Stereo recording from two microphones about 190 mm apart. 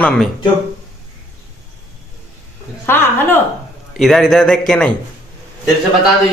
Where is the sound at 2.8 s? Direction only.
10° left (ahead or behind).